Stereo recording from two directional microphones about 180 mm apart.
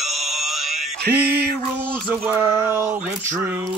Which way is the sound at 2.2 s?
15° right (ahead or behind).